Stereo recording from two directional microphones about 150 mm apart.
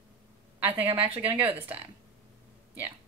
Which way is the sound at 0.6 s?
40° right (ahead or behind).